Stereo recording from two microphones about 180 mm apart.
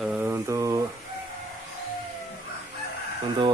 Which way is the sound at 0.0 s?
10° right (ahead or behind).